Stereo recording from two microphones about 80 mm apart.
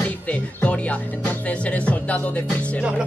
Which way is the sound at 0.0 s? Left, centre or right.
Centre.